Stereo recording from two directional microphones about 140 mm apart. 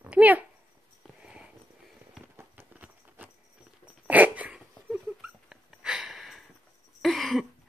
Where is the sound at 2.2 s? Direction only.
15° right (ahead or behind).